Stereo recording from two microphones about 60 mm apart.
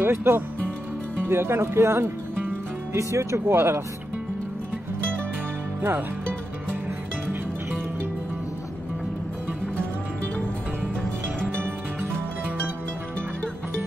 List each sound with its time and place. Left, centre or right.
0.0 s speech: right
2.9 s speech: right
5.8 s speech: right